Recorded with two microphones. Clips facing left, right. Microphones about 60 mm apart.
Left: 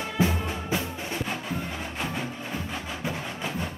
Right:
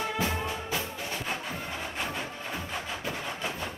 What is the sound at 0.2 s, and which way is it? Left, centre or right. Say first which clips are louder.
Music: left 4 dB; left.